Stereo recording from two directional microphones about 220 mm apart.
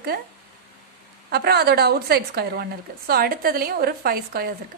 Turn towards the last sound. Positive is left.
turn(degrees=-45)  # may be behind; listen again after turning